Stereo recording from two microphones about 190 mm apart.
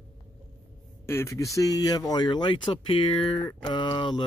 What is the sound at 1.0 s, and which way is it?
Speech, 15° left (ahead or behind).